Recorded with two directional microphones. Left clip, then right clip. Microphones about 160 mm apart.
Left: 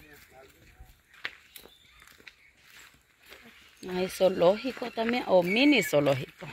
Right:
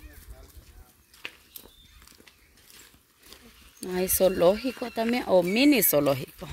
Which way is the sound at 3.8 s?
60° right (ahead or behind).